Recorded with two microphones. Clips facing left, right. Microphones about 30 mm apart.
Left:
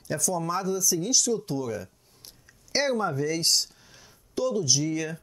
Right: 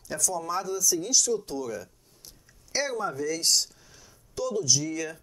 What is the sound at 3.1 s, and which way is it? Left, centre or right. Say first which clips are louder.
Speech: left 1 dB; centre.